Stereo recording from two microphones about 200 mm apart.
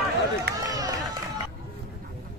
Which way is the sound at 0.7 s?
15° right (ahead or behind).